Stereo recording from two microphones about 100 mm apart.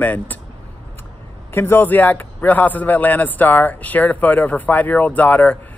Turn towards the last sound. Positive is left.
turn(degrees=15)  # may be behind; listen again after turning